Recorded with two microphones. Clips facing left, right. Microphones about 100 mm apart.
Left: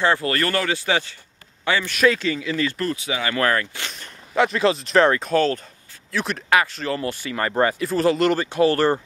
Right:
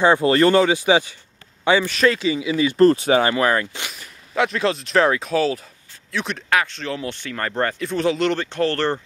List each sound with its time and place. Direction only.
0.0 s a man's voice: 20° right (ahead or behind)
1.9 s speech: centre (ahead or behind)
2.2 s speech: 10° right (ahead or behind)
2.8 s speech: 40° right (ahead or behind)
3.3 s speech: 20° right (ahead or behind)
3.9 s speech: centre (ahead or behind)